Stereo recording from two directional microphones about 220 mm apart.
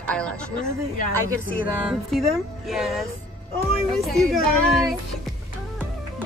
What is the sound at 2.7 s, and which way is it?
Speech, centre (ahead or behind).